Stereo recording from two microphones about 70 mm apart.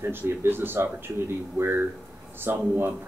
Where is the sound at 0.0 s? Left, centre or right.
Right.